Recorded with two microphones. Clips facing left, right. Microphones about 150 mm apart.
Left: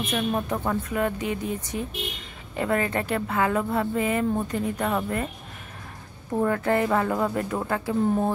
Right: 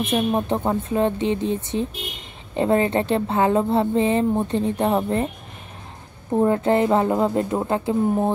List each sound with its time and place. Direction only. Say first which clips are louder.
0.0 s a woman's voice: right 5 dB; 30° right (ahead or behind)
6.3 s a woman's voice: right 5 dB; 25° right (ahead or behind)